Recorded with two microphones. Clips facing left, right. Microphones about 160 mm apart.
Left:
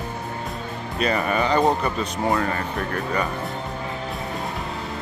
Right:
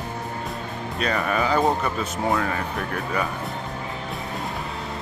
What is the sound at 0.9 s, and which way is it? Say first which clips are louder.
Speech: left 2 dB; centre (ahead or behind).